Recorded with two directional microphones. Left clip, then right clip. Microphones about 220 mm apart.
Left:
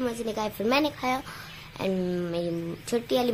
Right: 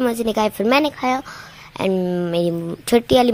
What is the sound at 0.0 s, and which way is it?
Speech, 35° right (ahead or behind).